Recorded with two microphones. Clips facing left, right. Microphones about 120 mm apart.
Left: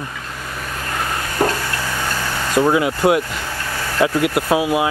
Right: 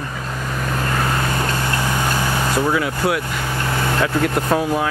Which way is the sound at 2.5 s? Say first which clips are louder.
Left 7 dB; 20° left (ahead or behind).